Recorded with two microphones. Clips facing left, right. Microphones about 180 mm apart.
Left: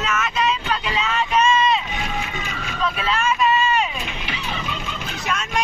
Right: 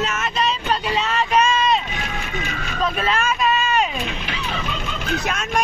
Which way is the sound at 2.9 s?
45° right (ahead or behind).